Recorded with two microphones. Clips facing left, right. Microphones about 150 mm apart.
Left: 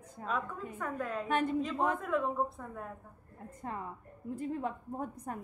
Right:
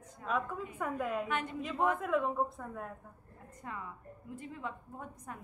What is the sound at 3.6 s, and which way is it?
A woman's voice, 40° left (ahead or behind).